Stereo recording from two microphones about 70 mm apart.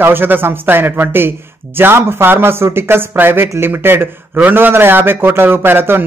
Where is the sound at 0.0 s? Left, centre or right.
Right.